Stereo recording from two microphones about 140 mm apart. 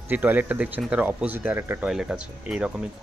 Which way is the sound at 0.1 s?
10° right (ahead or behind).